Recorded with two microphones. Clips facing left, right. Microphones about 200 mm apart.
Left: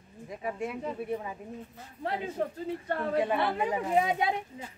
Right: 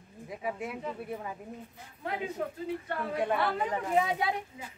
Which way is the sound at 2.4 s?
35° left (ahead or behind).